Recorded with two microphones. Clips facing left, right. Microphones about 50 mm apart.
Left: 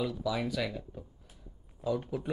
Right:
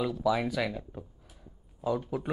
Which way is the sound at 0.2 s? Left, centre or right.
Centre.